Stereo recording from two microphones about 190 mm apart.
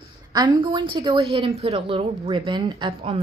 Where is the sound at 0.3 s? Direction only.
20° right (ahead or behind).